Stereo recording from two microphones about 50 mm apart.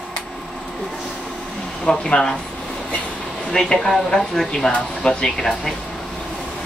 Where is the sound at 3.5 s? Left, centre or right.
Centre.